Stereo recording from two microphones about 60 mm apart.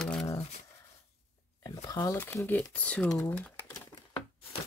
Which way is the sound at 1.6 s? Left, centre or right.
Left.